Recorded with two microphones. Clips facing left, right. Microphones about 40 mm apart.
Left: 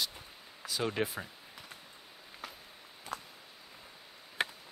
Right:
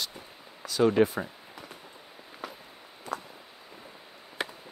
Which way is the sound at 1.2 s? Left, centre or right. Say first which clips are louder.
Right 6 dB; centre.